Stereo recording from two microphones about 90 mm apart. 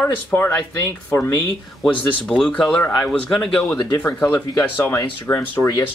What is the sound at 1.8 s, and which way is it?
Speech, 5° left (ahead or behind).